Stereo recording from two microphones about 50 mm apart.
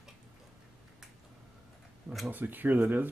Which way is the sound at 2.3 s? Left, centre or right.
Right.